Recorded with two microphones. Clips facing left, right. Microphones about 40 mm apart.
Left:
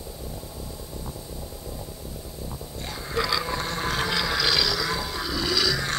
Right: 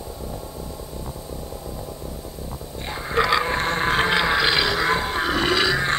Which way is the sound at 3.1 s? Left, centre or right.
Right.